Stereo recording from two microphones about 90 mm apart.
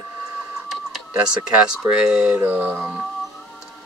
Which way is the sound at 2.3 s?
20° right (ahead or behind).